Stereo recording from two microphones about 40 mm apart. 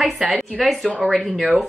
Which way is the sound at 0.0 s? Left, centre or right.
Centre.